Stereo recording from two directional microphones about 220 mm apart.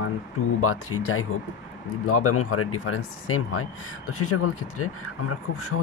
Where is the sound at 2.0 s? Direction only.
85° left.